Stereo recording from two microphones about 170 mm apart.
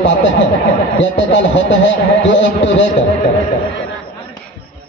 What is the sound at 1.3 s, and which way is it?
A man's voice, 90° left.